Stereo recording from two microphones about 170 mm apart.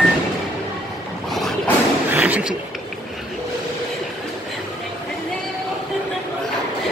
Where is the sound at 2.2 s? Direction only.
10° right (ahead or behind).